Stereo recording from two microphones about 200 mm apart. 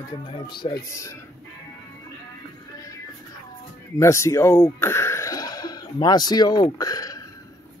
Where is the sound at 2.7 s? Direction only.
15° left (ahead or behind).